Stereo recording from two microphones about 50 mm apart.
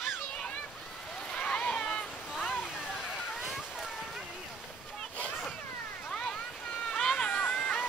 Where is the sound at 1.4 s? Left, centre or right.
Left.